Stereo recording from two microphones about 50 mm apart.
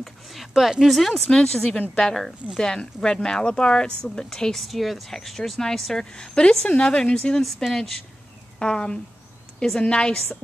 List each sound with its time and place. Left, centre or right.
0.0 s speech: centre
7.4 s speech: centre
8.5 s speech: centre